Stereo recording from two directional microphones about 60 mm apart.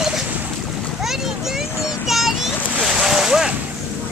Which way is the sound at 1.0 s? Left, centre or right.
Centre.